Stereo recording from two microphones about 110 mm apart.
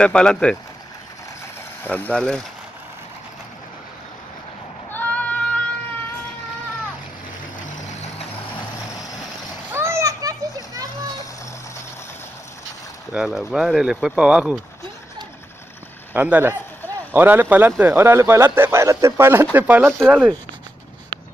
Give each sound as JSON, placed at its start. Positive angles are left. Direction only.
{"t": 0.0, "sound": "speech", "side_deg": 10}
{"t": 1.8, "sound": "speech", "side_deg": 15}
{"t": 4.9, "sound": "a sound", "side_deg": 15}
{"t": 7.8, "sound": "vehicle", "side_deg": 90}
{"t": 9.7, "sound": "children playing", "side_deg": -25}
{"t": 13.1, "sound": "speech", "side_deg": -5}
{"t": 16.1, "sound": "speech", "side_deg": -15}
{"t": 20.0, "sound": "speech", "side_deg": 0}